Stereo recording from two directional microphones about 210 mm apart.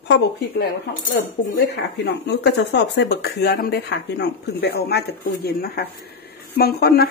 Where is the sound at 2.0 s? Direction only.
55° left (ahead or behind).